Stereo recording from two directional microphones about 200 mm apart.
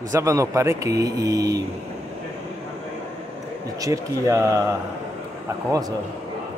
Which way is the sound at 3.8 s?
15° right (ahead or behind).